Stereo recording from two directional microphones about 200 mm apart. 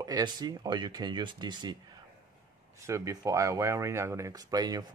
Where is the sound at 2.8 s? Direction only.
15° right (ahead or behind).